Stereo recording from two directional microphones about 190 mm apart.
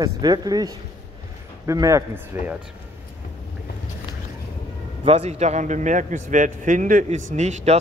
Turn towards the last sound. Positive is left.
turn(degrees=-40)  # may be behind; listen again after turning